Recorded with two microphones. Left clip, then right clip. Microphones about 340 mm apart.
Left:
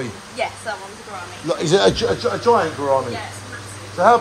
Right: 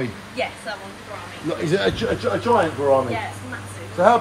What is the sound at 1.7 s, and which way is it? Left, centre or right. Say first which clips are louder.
Speech: left 6 dB; centre.